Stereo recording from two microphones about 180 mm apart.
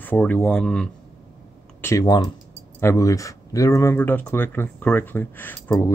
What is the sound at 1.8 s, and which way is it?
Speech, 20° left (ahead or behind).